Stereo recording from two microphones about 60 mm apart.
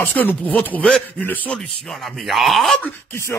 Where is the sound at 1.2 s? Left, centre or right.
Left.